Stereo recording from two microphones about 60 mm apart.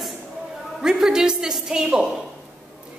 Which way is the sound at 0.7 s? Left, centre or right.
Centre.